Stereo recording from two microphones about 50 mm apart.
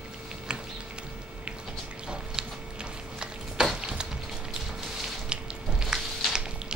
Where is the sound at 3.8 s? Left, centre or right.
Centre.